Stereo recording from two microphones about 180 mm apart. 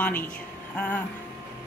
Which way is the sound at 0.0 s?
10° left (ahead or behind).